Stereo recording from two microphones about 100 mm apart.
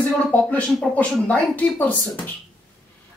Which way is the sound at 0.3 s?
15° left (ahead or behind).